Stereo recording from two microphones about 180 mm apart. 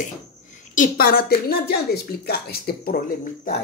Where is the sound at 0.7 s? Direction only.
55° left (ahead or behind).